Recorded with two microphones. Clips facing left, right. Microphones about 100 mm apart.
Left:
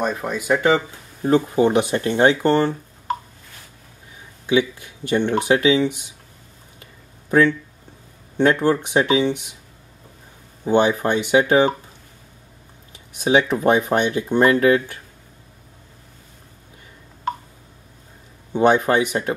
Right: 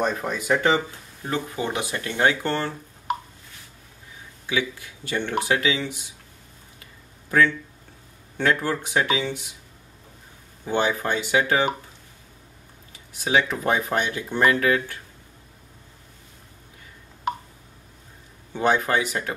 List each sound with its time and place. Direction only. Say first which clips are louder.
0.0 s speech: left 2 dB; 5° left (ahead or behind)
1.2 s speech: left 11 dB; 30° left (ahead or behind)
4.5 s speech: left 8 dB; 20° left (ahead or behind)
7.2 s speech: left 4 dB; 20° left (ahead or behind)
10.6 s speech: left 6 dB; 20° left (ahead or behind)
13.1 s speech: left 5 dB; 20° left (ahead or behind)
18.5 s speech: left 5 dB; 20° left (ahead or behind)